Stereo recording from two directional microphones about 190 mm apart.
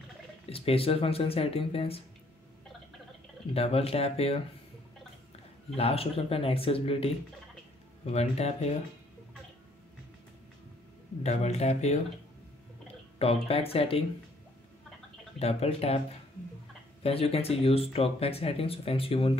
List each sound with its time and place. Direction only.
0.5 s speech: 30° left (ahead or behind)
3.5 s speech: 30° left (ahead or behind)
5.8 s speech: 30° left (ahead or behind)
11.2 s speech: 35° left (ahead or behind)
13.2 s speech: 30° left (ahead or behind)
15.3 s speech: 35° left (ahead or behind)
17.0 s speech: 30° left (ahead or behind)